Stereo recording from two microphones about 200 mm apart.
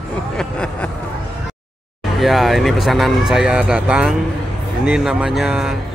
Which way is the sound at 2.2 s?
Centre (ahead or behind).